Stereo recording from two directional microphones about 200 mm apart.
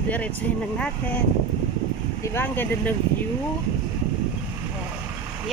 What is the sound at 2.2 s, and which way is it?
Speech, 10° left (ahead or behind).